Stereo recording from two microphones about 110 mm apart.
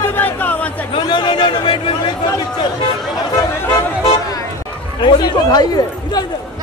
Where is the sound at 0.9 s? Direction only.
50° left (ahead or behind).